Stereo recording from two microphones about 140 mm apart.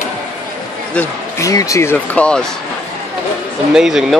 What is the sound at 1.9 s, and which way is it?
Speech, 10° left (ahead or behind).